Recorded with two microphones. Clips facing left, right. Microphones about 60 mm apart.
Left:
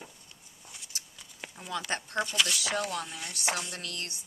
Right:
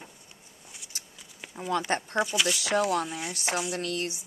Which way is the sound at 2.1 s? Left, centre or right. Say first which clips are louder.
Right 1 dB; centre.